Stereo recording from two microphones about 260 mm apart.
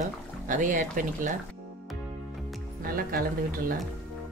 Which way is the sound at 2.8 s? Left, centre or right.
Right.